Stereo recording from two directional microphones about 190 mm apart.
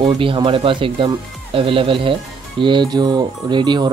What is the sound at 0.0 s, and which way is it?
Speech, 25° right (ahead or behind).